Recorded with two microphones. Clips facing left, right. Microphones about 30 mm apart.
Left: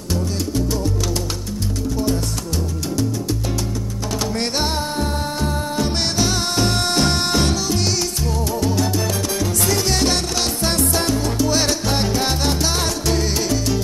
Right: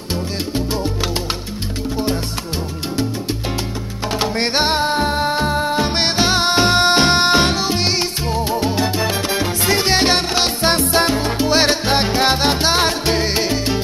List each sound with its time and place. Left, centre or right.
4.1 s music: right